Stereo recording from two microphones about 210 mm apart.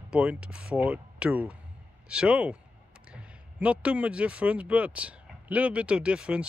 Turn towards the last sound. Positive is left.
turn(degrees=-5)  # may be behind; listen again after turning